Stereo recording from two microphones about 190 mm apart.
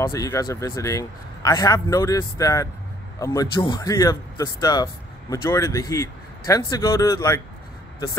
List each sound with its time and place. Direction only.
0.0 s a man's voice: 15° left (ahead or behind)